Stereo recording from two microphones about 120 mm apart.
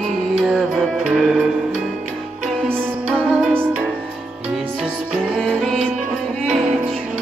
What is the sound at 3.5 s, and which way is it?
Music, 15° right (ahead or behind).